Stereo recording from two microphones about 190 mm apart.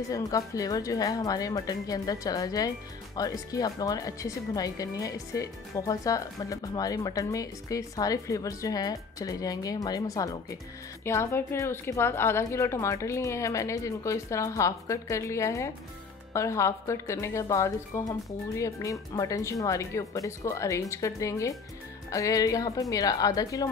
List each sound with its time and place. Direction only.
0.1 s speech: 20° left (ahead or behind)